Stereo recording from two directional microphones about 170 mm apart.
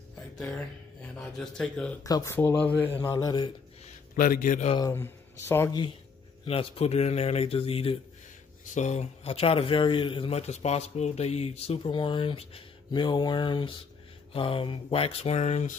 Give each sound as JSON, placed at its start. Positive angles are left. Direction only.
{"t": 1.1, "sound": "speech", "side_deg": 5}
{"t": 2.0, "sound": "speech", "side_deg": 20}
{"t": 3.1, "sound": "speech", "side_deg": 20}
{"t": 3.8, "sound": "a man's voice", "side_deg": 55}
{"t": 4.7, "sound": "speech", "side_deg": 15}
{"t": 6.4, "sound": "a man's voice", "side_deg": 35}